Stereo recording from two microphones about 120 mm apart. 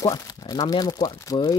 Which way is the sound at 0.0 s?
30° left (ahead or behind).